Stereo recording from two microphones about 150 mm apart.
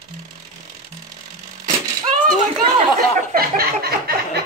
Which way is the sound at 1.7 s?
60° right (ahead or behind).